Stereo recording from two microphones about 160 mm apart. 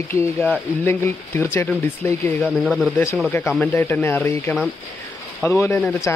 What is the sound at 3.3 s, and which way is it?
Speech, 15° left (ahead or behind).